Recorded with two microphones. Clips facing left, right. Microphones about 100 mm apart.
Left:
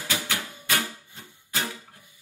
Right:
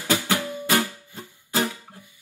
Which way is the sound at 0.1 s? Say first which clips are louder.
Right 8 dB; 45° right (ahead or behind).